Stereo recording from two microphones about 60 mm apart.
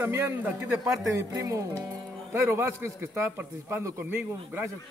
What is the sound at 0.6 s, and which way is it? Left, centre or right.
Speech, centre.